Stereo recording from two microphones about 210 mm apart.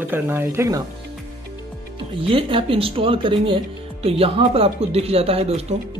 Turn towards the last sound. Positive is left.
turn(degrees=-30)  # may be behind; listen again after turning